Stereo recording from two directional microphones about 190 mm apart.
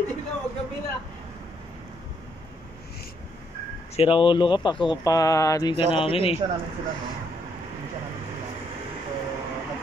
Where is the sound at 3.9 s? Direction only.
30° left (ahead or behind).